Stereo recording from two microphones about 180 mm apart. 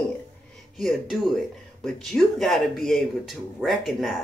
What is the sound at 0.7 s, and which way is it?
Speech, centre (ahead or behind).